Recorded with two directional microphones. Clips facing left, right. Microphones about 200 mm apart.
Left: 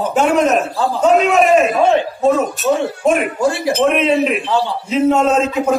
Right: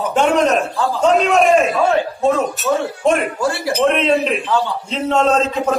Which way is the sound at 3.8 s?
5° left (ahead or behind).